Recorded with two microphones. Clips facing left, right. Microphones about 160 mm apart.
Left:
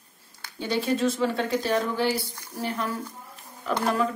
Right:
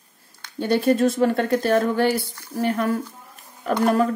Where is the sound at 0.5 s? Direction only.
50° right (ahead or behind).